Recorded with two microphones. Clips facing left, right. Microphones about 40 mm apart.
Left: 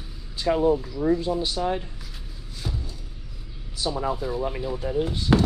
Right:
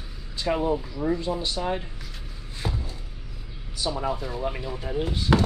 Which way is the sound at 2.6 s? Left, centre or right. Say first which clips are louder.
Right 2 dB; right.